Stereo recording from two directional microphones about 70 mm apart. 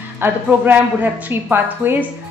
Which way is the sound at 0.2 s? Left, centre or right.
Right.